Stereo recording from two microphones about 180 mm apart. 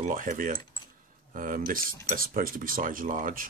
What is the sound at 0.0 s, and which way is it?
Speech, 45° right (ahead or behind).